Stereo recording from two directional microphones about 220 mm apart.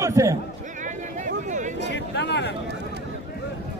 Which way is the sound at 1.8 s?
55° left (ahead or behind).